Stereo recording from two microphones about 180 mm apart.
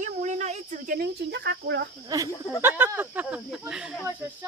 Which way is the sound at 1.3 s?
75° right (ahead or behind).